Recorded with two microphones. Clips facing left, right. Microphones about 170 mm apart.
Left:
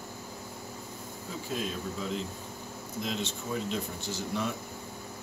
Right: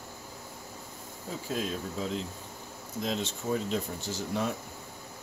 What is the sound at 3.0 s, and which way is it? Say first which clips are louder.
Speech: right 2 dB; 40° right (ahead or behind).